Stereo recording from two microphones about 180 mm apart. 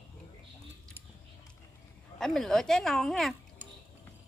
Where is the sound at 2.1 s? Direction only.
5° left (ahead or behind).